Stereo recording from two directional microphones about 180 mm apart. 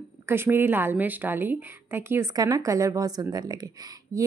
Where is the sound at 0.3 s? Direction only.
10° right (ahead or behind).